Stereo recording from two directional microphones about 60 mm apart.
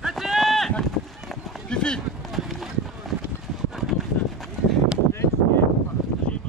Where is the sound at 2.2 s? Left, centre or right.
Centre.